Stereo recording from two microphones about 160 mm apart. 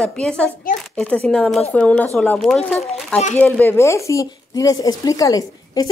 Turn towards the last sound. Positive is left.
turn(degrees=25)  # may be behind; listen again after turning